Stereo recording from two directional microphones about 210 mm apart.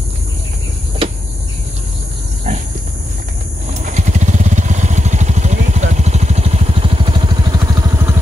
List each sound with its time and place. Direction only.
3.9 s vehicle: 35° right (ahead or behind); by 8.2 s 15° right (ahead or behind)